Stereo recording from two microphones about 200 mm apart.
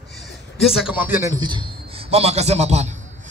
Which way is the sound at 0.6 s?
5° right (ahead or behind).